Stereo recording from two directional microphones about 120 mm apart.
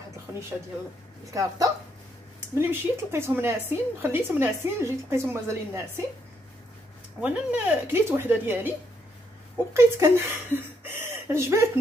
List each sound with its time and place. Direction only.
1.3 s a woman's voice: 30° right (ahead or behind)
7.2 s speech: 10° right (ahead or behind)
9.8 s speech: 20° right (ahead or behind)